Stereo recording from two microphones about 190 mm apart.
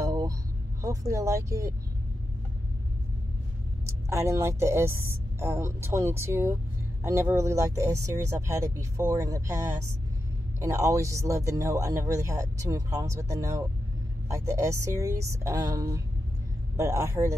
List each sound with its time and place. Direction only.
0.0 s a sound: 20° right (ahead or behind)
0.8 s a woman's voice: 15° right (ahead or behind)
4.1 s a woman's voice: 15° right (ahead or behind)